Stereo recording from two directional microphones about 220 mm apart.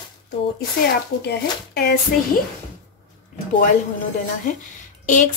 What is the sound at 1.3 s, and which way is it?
Speech, 45° left (ahead or behind).